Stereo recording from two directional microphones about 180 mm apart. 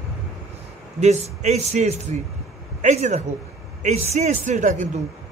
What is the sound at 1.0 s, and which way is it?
A man's voice, 40° right (ahead or behind).